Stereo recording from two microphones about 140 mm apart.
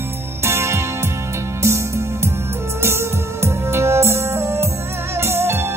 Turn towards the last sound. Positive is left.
turn(degrees=-15)  # may be behind; listen again after turning